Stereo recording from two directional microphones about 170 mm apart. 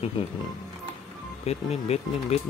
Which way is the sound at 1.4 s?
40° left (ahead or behind).